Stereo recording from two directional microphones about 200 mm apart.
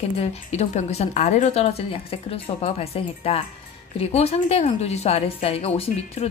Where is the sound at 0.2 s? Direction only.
30° left (ahead or behind).